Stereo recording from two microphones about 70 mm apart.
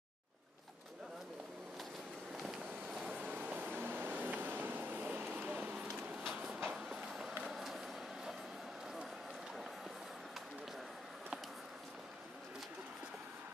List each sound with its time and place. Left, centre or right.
2.3 s vehicle: centre
3.2 s vehicle: right
6.2 s a sound: centre
6.7 s train: centre